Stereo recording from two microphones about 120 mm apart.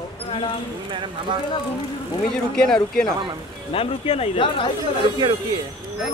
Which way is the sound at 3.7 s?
55° left (ahead or behind).